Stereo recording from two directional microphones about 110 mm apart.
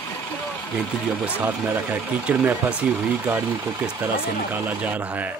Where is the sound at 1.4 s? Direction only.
15° right (ahead or behind).